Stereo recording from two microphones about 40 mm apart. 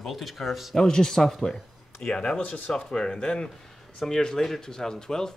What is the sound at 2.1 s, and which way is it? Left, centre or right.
Speech, left.